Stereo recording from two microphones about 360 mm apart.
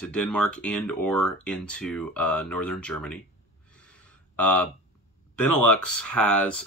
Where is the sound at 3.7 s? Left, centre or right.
Centre.